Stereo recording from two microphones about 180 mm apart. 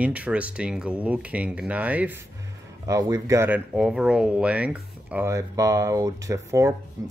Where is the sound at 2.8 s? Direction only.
20° right (ahead or behind).